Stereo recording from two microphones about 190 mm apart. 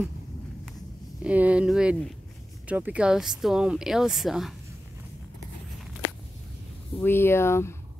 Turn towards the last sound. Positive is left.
turn(degrees=15)  # may be behind; listen again after turning